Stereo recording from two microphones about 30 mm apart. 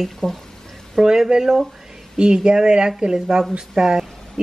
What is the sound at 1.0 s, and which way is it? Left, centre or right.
Speech, right.